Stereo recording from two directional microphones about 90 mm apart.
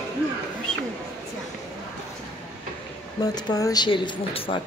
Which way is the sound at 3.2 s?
45° left (ahead or behind).